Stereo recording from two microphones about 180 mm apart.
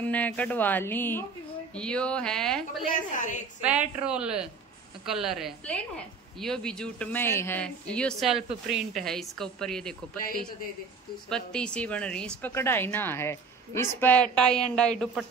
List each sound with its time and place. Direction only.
0.0 s a woman's voice: 10° left (ahead or behind)
2.9 s a woman's voice: 45° left (ahead or behind)
4.0 s a woman's voice: 5° right (ahead or behind)
11.2 s a woman's voice: 5° left (ahead or behind)